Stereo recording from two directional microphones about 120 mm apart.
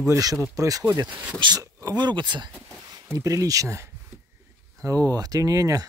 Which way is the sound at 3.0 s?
25° right (ahead or behind).